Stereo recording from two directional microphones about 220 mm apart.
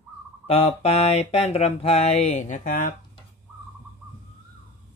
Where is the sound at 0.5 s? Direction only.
25° left (ahead or behind).